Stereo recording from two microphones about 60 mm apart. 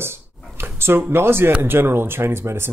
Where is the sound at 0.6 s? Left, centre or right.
Right.